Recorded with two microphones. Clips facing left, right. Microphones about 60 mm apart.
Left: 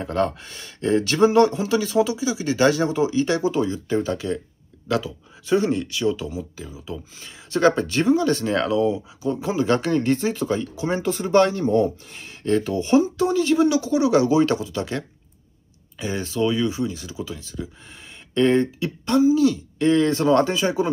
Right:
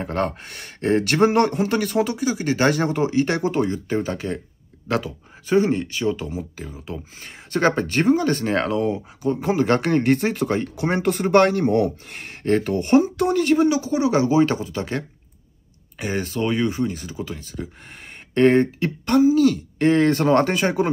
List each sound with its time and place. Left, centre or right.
0.0 s speech: right